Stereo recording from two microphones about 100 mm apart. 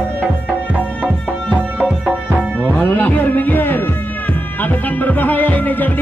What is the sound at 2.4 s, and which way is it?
Music, 15° right (ahead or behind).